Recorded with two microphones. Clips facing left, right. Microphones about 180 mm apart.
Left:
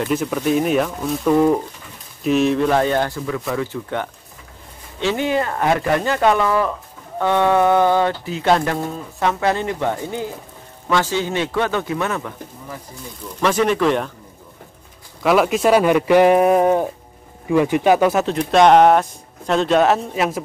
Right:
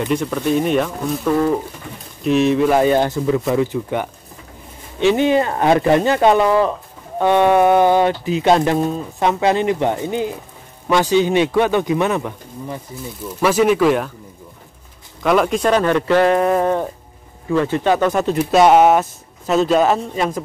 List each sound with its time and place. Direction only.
0.0 s speech: 5° left (ahead or behind); by 12.8 s 20° right (ahead or behind)
13.4 s speech: 10° right (ahead or behind)
15.2 s speech: 5° left (ahead or behind)
18.2 s speech: 5° right (ahead or behind)